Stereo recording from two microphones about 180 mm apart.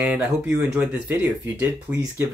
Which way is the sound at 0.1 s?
5° right (ahead or behind).